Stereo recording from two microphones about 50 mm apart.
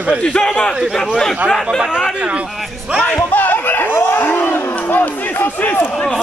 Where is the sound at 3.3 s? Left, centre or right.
Left.